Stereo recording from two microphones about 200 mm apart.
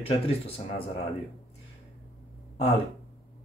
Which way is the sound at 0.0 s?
30° left (ahead or behind).